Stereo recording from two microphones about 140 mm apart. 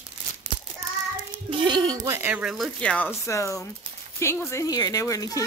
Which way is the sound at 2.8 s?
10° left (ahead or behind).